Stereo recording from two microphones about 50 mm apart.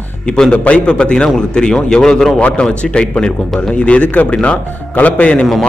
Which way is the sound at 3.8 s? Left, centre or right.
Left.